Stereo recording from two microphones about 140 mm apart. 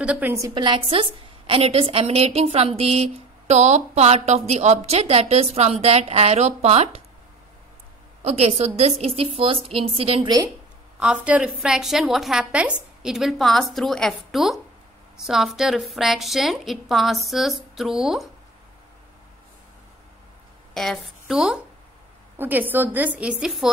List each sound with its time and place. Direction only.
0.0 s a woman's voice: 10° right (ahead or behind)
0.6 s a woman's voice: 35° right (ahead or behind)
1.5 s a woman's voice: 45° right (ahead or behind)
8.3 s a woman's voice: 50° right (ahead or behind)
11.0 s a woman's voice: 5° right (ahead or behind)
20.7 s a woman's voice: centre (ahead or behind)